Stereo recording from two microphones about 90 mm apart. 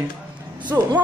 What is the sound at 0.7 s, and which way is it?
Speech, 30° right (ahead or behind).